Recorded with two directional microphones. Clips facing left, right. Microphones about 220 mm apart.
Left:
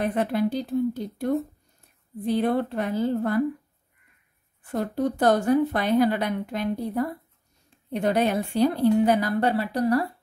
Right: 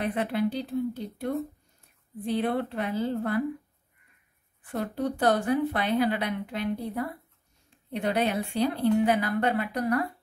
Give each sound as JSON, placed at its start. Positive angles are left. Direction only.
{"t": 0.0, "sound": "a woman's voice", "side_deg": 45}
{"t": 4.6, "sound": "a woman's voice", "side_deg": 40}